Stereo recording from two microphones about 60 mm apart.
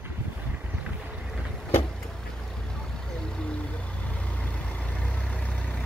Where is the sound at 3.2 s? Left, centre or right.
Centre.